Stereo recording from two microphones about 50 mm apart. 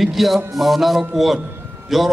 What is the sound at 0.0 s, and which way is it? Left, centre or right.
Speech, centre.